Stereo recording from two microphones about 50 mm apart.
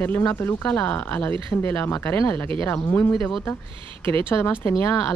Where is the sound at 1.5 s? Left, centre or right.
Left.